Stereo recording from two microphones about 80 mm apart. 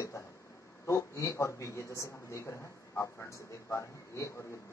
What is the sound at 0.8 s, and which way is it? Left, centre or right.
A man's voice, left.